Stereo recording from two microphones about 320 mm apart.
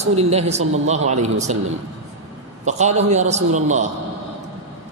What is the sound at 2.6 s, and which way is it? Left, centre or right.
A woman's voice, right.